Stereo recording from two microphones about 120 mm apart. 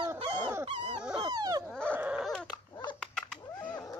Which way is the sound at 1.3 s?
30° right (ahead or behind).